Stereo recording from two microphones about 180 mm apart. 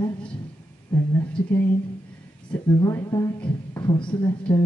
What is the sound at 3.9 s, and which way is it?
Speech, 25° left (ahead or behind).